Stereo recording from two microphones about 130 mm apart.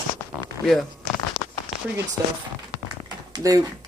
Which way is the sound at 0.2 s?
15° left (ahead or behind).